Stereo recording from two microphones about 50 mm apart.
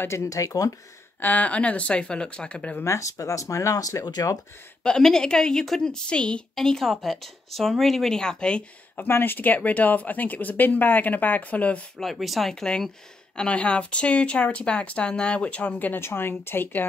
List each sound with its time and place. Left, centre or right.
0.1 s speech: left
1.2 s speech: left
2.8 s speech: left
4.8 s a woman's voice: centre
6.5 s a woman's voice: centre
8.9 s speech: left
12.0 s speech: centre
13.4 s speech: left
16.0 s speech: left